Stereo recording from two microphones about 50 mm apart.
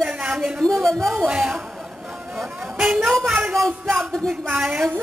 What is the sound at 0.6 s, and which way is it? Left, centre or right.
Speech, centre.